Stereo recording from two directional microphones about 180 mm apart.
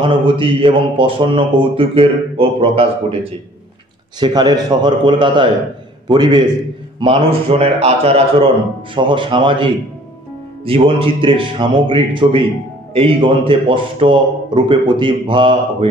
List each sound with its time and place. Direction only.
0.0 s a man's voice: 30° right (ahead or behind)
4.2 s a man's voice: 25° right (ahead or behind)